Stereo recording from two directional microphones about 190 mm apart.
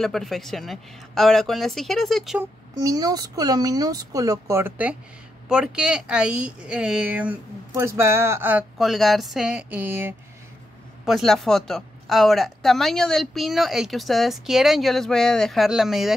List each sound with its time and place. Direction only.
0.0 s speech: centre (ahead or behind)
2.7 s speech: 20° right (ahead or behind)
11.1 s speech: centre (ahead or behind)